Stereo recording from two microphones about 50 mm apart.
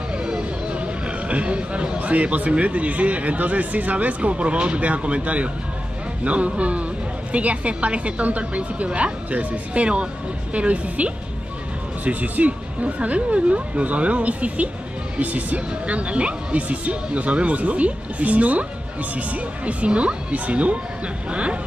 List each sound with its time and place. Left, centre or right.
0.2 s speech: right